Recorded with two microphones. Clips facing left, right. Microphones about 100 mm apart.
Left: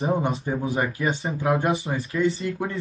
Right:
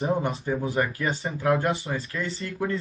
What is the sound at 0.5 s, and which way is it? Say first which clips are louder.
Speech: left 1 dB; 20° left (ahead or behind).